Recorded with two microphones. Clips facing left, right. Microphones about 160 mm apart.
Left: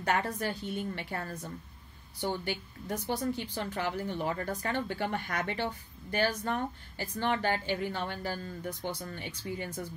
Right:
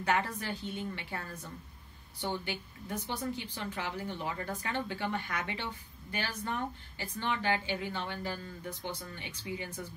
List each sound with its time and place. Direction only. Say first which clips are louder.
0.0 s a woman's voice: left 2 dB; 50° left (ahead or behind)
2.4 s a woman's voice: left 4 dB; 45° left (ahead or behind)